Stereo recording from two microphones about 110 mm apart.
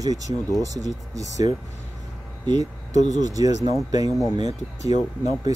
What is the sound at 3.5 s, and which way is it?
Speech, 90° left.